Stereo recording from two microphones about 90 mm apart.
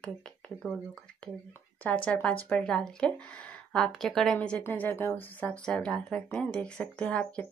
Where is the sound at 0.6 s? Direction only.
10° left (ahead or behind).